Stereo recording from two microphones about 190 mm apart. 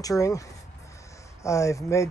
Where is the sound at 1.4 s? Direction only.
15° left (ahead or behind).